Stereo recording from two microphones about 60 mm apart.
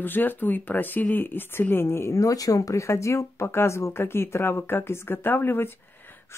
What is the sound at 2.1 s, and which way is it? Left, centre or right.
Speech, left.